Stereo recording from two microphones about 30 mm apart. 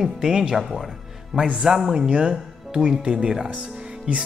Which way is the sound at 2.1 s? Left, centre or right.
Right.